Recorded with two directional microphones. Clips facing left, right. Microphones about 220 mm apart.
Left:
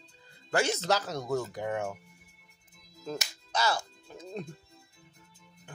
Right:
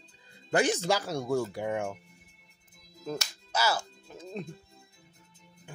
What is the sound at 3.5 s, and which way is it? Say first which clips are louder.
Music: right 1 dB; 5° right (ahead or behind).